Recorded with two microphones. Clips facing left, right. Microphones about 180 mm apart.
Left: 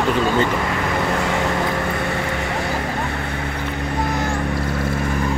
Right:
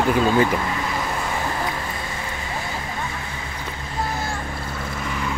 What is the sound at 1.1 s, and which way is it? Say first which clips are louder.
Vehicle: left 5 dB; 80° left.